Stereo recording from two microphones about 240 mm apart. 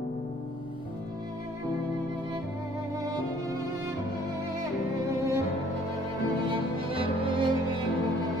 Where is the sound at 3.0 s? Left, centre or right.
Centre.